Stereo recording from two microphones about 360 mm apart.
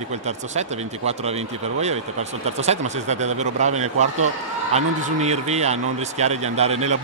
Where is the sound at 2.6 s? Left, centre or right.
Centre.